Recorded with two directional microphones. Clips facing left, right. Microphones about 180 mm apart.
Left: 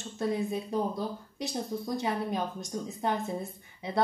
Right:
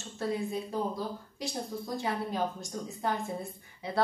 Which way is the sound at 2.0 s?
20° left (ahead or behind).